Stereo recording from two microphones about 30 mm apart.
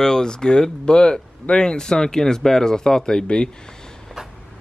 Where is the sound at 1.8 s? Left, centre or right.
Left.